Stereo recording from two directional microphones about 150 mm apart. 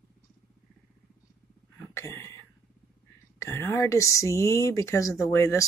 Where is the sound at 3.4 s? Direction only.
20° left (ahead or behind).